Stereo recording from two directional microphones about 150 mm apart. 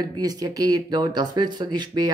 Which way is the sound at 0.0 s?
25° right (ahead or behind).